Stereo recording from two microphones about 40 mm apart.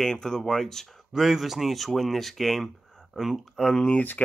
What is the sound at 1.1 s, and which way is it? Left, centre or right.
Speech, centre.